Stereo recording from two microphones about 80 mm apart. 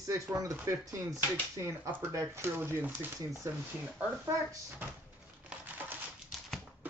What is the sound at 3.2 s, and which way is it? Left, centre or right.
Speech, right.